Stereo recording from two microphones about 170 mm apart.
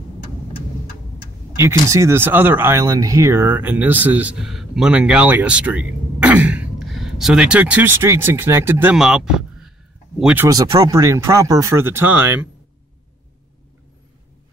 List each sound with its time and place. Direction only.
1.6 s speech: 15° right (ahead or behind)
8.9 s speech: 5° right (ahead or behind)
10.2 s speech: 15° right (ahead or behind)